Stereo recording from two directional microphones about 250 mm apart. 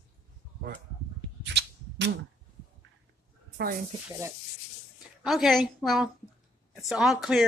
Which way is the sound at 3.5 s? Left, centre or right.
Right.